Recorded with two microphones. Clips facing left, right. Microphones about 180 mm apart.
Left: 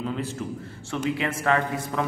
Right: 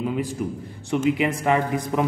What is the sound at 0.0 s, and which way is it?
A man's voice, 15° right (ahead or behind).